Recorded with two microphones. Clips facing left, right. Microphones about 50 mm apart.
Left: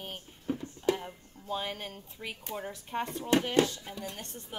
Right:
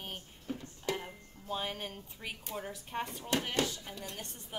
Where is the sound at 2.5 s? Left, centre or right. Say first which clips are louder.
Left 3 dB; centre.